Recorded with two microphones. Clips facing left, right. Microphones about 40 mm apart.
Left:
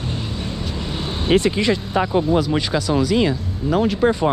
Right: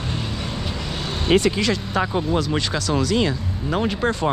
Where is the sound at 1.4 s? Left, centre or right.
Left.